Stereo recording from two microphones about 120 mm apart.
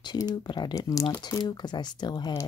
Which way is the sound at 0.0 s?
35° left (ahead or behind).